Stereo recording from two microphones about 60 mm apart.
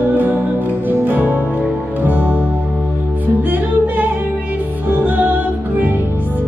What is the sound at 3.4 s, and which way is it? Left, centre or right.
Music, right.